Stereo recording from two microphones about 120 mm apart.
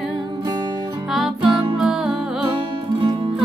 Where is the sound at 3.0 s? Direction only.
40° right (ahead or behind).